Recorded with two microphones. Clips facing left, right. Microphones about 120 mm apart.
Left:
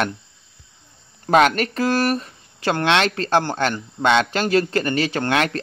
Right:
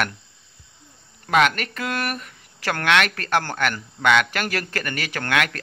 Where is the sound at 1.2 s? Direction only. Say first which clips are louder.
Left 4 dB; 35° left (ahead or behind).